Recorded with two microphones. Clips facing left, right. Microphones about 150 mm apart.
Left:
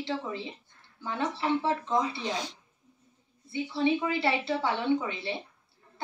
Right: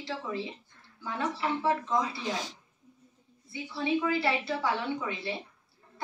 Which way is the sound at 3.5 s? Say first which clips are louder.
Left 4 dB; 25° left (ahead or behind).